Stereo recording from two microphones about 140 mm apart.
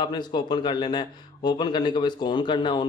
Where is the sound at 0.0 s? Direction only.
30° left (ahead or behind).